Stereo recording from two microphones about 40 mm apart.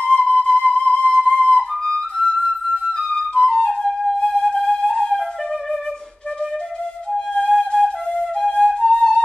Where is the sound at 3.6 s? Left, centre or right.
Centre.